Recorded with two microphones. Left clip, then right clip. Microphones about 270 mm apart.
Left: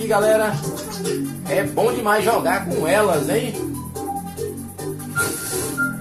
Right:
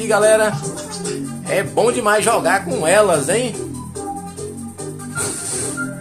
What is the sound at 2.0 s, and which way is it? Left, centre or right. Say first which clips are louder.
Speech: right 3 dB; right.